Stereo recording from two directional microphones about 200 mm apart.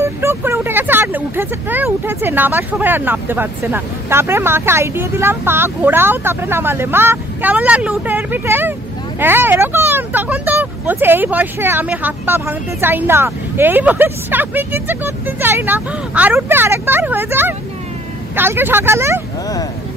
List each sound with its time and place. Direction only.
0.0 s speech: 10° right (ahead or behind)